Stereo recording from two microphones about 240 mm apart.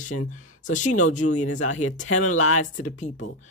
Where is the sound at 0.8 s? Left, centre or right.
Left.